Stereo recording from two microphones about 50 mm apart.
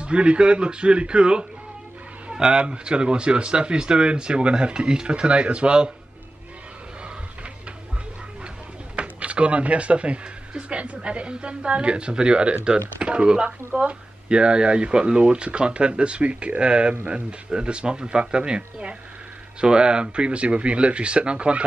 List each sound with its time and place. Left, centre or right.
0.0 s speech: right
8.9 s speech: right